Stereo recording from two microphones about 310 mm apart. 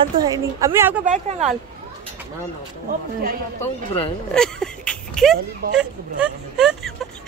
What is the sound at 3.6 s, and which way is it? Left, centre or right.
Speech, centre.